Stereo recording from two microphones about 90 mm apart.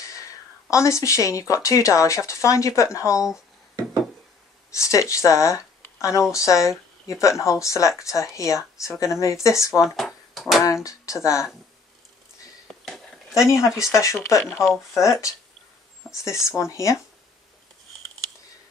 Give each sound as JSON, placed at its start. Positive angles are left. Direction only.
{"t": 0.0, "sound": "speech", "side_deg": 35}
{"t": 4.7, "sound": "speech", "side_deg": 35}
{"t": 9.8, "sound": "dishes", "side_deg": 0}
{"t": 10.6, "sound": "speech", "side_deg": 35}
{"t": 12.8, "sound": "a sound", "side_deg": 0}
{"t": 13.5, "sound": "speech", "side_deg": 35}
{"t": 16.3, "sound": "speech", "side_deg": 35}